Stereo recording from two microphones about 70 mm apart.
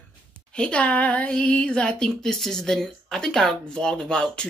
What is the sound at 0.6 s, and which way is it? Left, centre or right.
Speech, centre.